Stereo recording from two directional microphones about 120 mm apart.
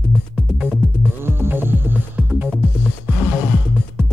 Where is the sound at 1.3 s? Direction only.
20° right (ahead or behind).